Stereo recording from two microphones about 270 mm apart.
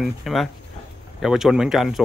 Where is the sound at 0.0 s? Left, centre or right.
Centre.